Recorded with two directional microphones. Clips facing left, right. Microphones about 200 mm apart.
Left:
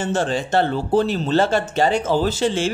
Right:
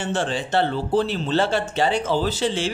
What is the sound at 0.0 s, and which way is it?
Speech, 40° left (ahead or behind).